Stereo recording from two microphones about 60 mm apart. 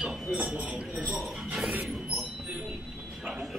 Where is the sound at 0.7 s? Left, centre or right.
Right.